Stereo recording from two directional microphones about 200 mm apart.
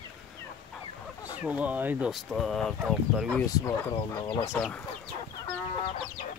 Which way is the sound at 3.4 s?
15° left (ahead or behind).